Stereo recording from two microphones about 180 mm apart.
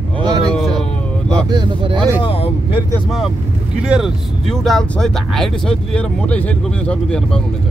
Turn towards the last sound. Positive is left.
turn(degrees=5)  # may be behind; listen again after turning